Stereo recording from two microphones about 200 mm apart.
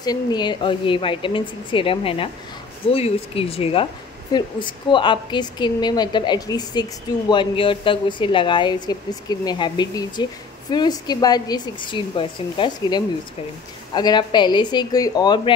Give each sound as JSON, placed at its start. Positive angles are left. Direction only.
{"t": 0.0, "sound": "a woman's voice", "side_deg": 20}